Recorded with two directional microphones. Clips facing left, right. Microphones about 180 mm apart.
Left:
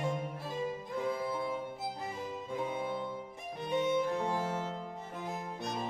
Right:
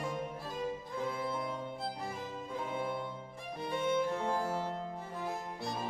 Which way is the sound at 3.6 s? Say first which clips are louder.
Left 2 dB; 20° left (ahead or behind).